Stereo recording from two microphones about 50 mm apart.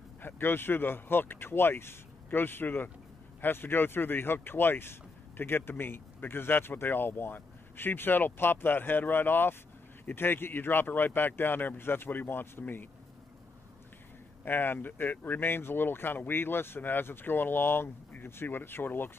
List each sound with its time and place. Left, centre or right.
0.2 s speech: left
14.4 s speech: left